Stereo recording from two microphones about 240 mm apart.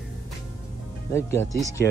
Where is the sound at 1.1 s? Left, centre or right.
Centre.